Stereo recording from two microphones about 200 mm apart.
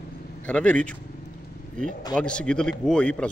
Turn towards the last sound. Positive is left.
turn(degrees=5)  # may be behind; listen again after turning